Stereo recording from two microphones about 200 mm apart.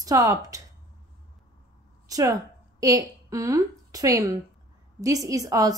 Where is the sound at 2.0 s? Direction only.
15° right (ahead or behind).